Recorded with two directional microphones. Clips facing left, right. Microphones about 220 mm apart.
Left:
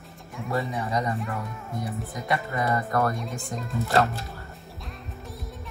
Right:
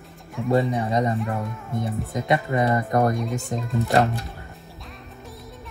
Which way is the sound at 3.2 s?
Centre (ahead or behind).